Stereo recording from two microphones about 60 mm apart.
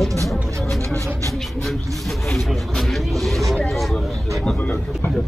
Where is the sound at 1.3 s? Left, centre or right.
Centre.